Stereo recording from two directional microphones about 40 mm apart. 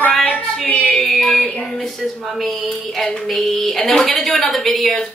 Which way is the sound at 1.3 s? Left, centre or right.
Left.